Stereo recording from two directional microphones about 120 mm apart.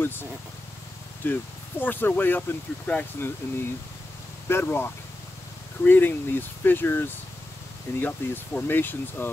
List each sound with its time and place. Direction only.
0.0 s speech: 15° left (ahead or behind)